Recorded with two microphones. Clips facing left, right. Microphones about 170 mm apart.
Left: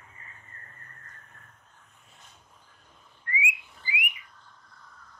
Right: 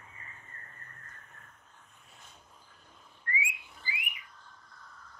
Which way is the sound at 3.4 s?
15° left (ahead or behind).